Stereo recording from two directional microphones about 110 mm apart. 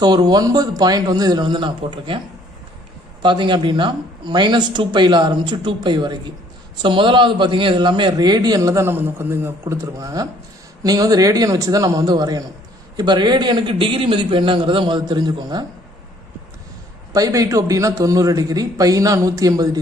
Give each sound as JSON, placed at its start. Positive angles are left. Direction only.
{"t": 0.0, "sound": "a man's voice", "side_deg": -40}
{"t": 8.9, "sound": "a man's voice", "side_deg": -20}
{"t": 17.1, "sound": "a man's voice", "side_deg": -35}